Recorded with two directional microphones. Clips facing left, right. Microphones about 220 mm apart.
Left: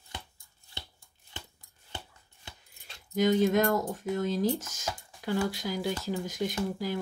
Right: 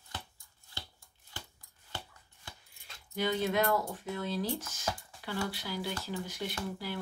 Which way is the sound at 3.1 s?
45° left (ahead or behind).